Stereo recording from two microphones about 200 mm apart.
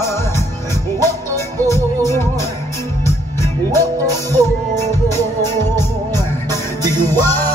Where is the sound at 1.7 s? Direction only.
15° left (ahead or behind).